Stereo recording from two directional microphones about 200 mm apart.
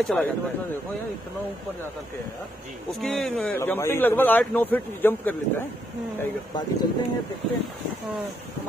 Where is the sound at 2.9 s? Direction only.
Centre (ahead or behind).